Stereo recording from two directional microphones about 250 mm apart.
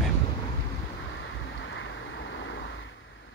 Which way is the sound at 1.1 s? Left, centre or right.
Left.